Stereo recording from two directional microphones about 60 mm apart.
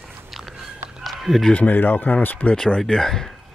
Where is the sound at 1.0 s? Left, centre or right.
Centre.